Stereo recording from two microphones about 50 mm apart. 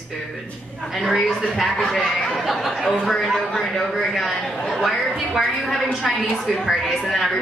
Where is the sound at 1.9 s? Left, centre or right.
Centre.